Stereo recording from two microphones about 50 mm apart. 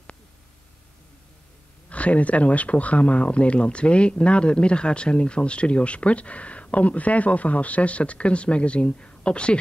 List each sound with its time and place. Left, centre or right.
1.9 s speech: left